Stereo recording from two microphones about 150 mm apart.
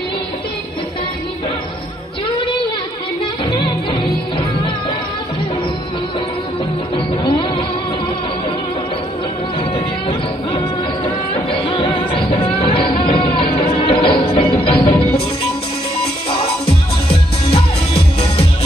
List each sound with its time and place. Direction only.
7.0 s music: 35° left (ahead or behind)
11.7 s music: 30° left (ahead or behind)